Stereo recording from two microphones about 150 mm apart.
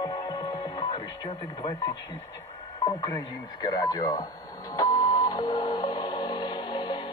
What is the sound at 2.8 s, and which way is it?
Speech, 25° left (ahead or behind).